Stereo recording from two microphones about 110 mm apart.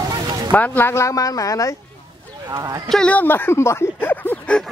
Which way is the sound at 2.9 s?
10° left (ahead or behind).